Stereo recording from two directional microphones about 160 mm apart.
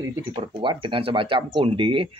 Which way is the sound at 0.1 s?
30° right (ahead or behind).